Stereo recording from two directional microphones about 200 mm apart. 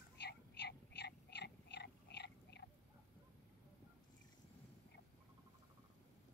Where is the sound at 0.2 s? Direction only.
55° left (ahead or behind).